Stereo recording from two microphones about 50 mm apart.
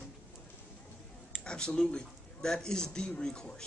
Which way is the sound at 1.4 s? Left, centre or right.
Centre.